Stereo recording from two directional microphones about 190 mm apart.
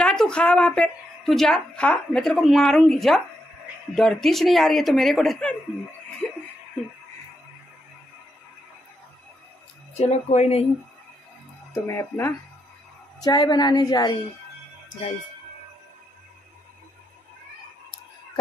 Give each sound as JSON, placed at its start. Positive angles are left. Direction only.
{"t": 0.0, "sound": "a woman's voice", "side_deg": 5}
{"t": 9.9, "sound": "speech", "side_deg": 35}
{"t": 11.7, "sound": "a woman's voice", "side_deg": 15}